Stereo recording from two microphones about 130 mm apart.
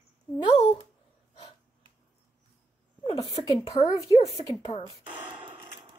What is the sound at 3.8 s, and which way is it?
Speech, 30° left (ahead or behind).